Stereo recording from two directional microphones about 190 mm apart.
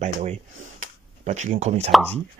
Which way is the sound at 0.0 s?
40° right (ahead or behind).